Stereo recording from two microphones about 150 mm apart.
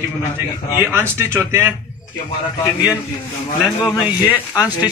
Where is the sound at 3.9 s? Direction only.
10° right (ahead or behind).